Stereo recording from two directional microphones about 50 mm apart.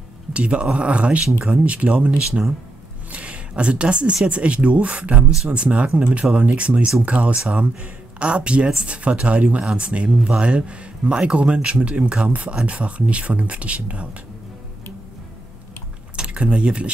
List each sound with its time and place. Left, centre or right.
0.3 s speech: right
16.2 s speech: right